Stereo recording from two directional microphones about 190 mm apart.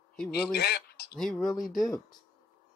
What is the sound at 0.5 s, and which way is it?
Speech, 55° left (ahead or behind).